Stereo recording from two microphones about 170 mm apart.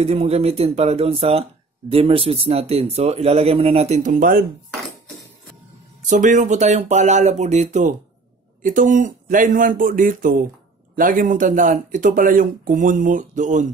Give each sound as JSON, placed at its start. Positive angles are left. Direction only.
{"t": 0.0, "sound": "speech", "side_deg": -35}
{"t": 6.0, "sound": "speech", "side_deg": -45}